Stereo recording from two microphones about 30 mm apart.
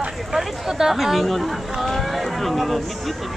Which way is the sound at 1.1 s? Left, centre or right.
Centre.